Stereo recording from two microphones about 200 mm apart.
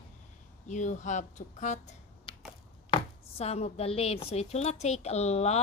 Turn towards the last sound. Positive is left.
turn(degrees=35)  # may be behind; listen again after turning